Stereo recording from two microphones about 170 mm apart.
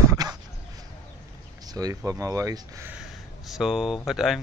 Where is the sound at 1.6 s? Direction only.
20° right (ahead or behind).